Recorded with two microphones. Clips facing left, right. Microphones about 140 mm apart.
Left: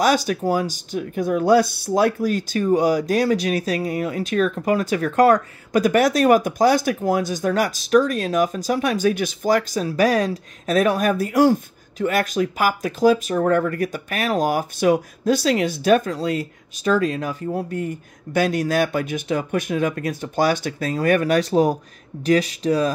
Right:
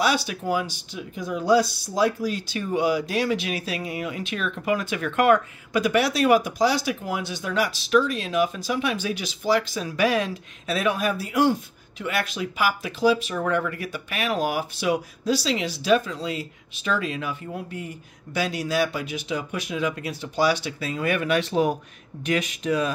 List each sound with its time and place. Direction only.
0.0 s speech: 45° left (ahead or behind)